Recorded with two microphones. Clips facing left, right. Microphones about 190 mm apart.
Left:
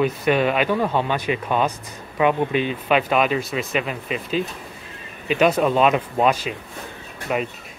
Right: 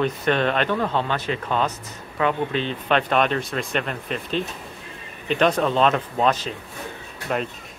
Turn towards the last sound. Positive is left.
turn(degrees=5)  # may be behind; listen again after turning